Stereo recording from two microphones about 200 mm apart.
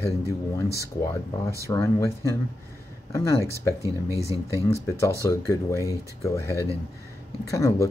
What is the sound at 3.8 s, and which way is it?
Speech, 15° right (ahead or behind).